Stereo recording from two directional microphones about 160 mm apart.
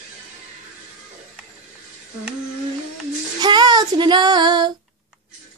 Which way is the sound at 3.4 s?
25° right (ahead or behind).